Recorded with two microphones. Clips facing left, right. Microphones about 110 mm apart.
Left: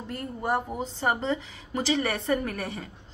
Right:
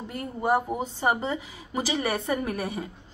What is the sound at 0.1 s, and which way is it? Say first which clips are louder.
A woman's voice: right 3 dB; 10° right (ahead or behind).